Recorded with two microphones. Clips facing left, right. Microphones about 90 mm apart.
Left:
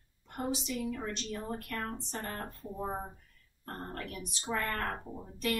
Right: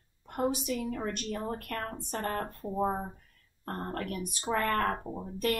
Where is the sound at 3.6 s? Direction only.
45° right (ahead or behind).